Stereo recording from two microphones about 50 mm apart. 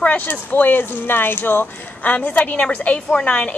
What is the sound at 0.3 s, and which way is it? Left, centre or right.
Speech, left.